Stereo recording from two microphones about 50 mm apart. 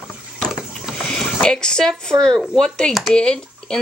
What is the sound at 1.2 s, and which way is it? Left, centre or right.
Speech, centre.